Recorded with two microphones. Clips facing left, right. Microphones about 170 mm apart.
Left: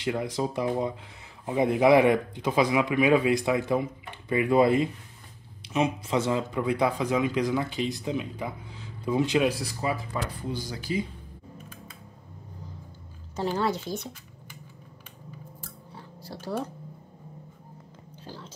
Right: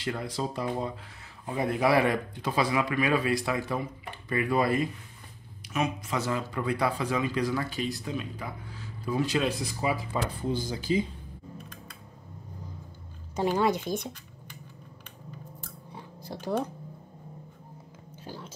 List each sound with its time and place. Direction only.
0.0 s speech: 15° left (ahead or behind)
9.8 s speech: 10° right (ahead or behind)
10.7 s speech: 25° right (ahead or behind)
13.4 s speech: 15° right (ahead or behind)
16.3 s speech: 20° right (ahead or behind)
18.2 s a sound: 15° right (ahead or behind)